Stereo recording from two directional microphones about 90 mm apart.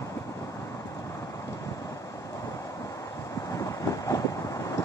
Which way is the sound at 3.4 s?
40° left (ahead or behind).